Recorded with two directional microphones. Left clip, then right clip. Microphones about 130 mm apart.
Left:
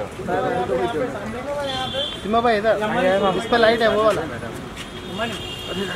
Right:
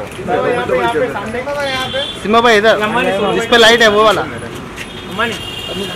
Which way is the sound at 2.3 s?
30° right (ahead or behind).